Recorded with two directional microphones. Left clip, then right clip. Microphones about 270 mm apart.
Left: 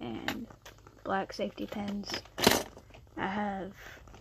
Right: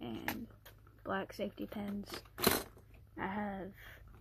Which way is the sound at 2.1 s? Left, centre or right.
Left.